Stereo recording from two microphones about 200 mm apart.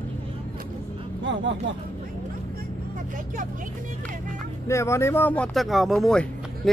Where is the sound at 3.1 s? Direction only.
40° right (ahead or behind).